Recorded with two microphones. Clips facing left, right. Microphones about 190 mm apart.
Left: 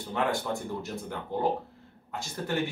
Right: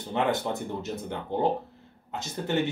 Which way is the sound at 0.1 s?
20° right (ahead or behind).